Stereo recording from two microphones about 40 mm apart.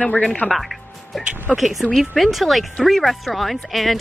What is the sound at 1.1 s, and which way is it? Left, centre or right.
Speech, centre.